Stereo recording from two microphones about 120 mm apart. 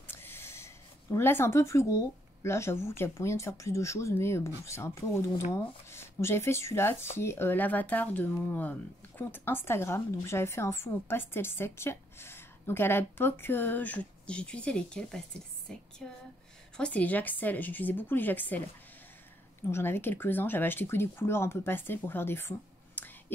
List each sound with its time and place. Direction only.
0.0 s a sound: 20° left (ahead or behind)
1.1 s a woman's voice: 20° left (ahead or behind)
15.7 s music: 5° left (ahead or behind)
16.7 s speech: 10° left (ahead or behind)
19.7 s speech: 20° left (ahead or behind)